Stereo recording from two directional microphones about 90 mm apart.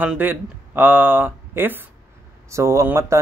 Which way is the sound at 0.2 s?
20° right (ahead or behind).